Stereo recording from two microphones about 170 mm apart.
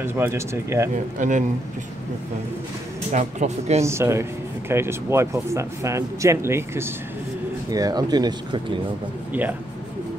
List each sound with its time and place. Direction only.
0.0 s speech: 15° right (ahead or behind)
1.2 s speech: 45° right (ahead or behind)
3.1 s speech: 45° right (ahead or behind)
3.8 s speech: 15° right (ahead or behind)
9.3 s speech: 10° right (ahead or behind)